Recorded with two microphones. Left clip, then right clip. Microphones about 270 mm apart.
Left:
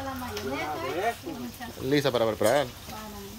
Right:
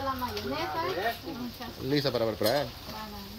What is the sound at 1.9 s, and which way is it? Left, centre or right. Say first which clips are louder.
Speech: left 4 dB; centre.